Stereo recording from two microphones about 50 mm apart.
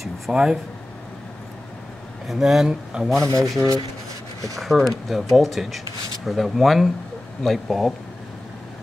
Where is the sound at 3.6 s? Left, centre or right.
Right.